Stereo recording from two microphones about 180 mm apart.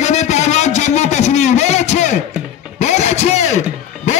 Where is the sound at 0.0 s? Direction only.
40° left (ahead or behind).